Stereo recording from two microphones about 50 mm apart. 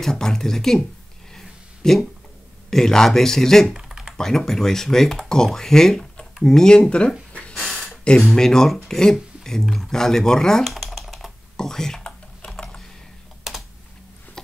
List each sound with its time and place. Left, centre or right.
0.0 s speech: centre
1.3 s a sound: centre
2.7 s speech: centre
3.7 s typing: centre
4.2 s speech: centre
7.7 s a sound: centre
8.3 s speech: centre
10.7 s typing: centre
11.5 s a sound: centre
12.4 s typing: centre
13.4 s typing: centre